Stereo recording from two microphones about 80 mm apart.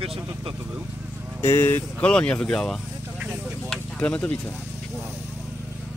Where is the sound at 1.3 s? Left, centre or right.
Left.